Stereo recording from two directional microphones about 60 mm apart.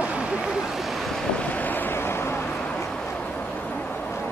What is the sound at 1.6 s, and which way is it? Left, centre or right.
Waves, left.